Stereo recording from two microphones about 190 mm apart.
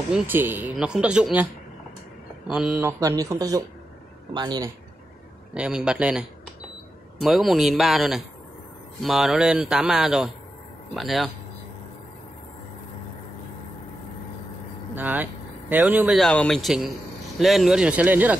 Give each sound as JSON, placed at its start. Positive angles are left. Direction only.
{"t": 0.1, "sound": "speech", "side_deg": -10}
{"t": 2.5, "sound": "a man's voice", "side_deg": -5}
{"t": 5.5, "sound": "speech", "side_deg": -5}
{"t": 15.0, "sound": "speech", "side_deg": -10}